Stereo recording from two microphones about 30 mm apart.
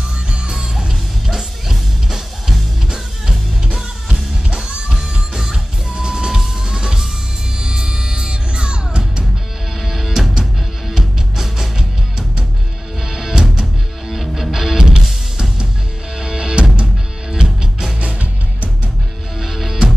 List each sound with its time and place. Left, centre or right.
0.6 s music: centre
4.1 s music: right
5.3 s music: centre
5.9 s music: right
9.8 s music: centre
13.0 s music: centre
14.0 s music: centre
14.8 s music: right
16.2 s music: right
18.0 s music: right
19.4 s music: centre